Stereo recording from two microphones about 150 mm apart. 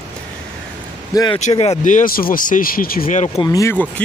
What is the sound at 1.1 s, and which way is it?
Speech, 25° left (ahead or behind).